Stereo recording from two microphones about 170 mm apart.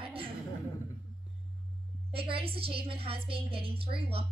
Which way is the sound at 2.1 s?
35° right (ahead or behind).